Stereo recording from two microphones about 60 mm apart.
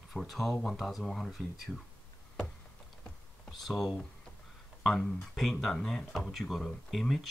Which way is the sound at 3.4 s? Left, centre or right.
Centre.